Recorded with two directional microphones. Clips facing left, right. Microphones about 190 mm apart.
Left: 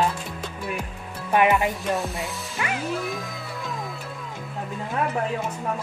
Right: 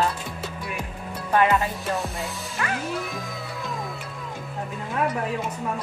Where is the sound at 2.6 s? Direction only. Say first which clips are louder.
Even; 15° left (ahead or behind).